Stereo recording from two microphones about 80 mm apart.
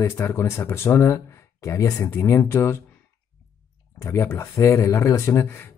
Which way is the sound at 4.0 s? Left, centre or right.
Left.